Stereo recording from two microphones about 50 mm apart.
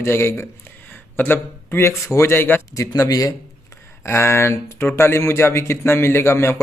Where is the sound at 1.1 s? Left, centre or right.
Left.